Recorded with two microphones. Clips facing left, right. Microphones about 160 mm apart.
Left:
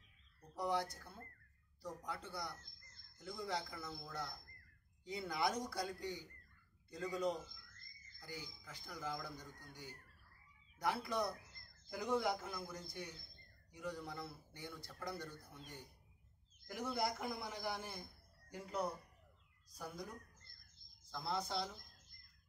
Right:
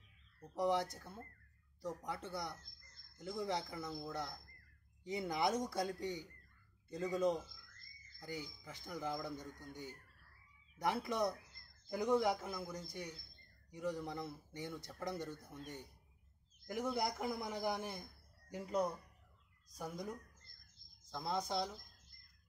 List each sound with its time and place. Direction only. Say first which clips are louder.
0.6 s speech: right 4 dB; 20° right (ahead or behind)
10.8 s speech: right 2 dB; 20° right (ahead or behind)
16.6 s a man's voice: right 2 dB; 20° right (ahead or behind)
19.7 s speech: right 4 dB; 20° right (ahead or behind)